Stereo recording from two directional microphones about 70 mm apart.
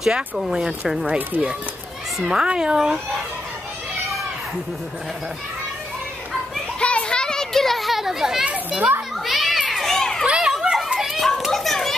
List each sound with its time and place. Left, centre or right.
0.0 s speech: centre
1.0 s speech: right
2.1 s speech: centre
6.8 s children playing: centre
8.5 s a child's voice: centre
9.2 s children playing: centre
10.2 s children playing: centre